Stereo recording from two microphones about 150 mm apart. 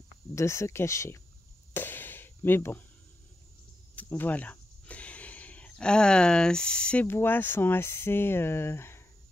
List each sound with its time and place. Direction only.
0.3 s speech: 20° left (ahead or behind)
1.7 s a sound: 15° left (ahead or behind)
3.9 s speech: 10° left (ahead or behind)